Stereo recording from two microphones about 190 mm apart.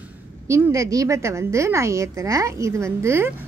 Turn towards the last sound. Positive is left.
turn(degrees=-15)  # may be behind; listen again after turning